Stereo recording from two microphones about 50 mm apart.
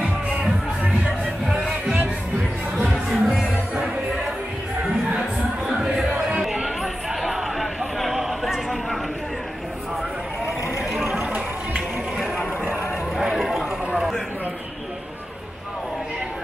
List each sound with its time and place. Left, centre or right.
0.0 s music: centre
2.9 s music: centre
5.9 s music: centre
8.0 s a sound: centre
11.1 s music: centre
13.4 s a sound: centre